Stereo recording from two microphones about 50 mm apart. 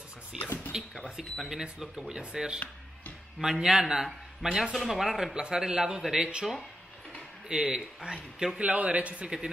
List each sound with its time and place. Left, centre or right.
0.3 s a man's voice: centre
7.4 s a man's voice: centre
8.5 s a man's voice: right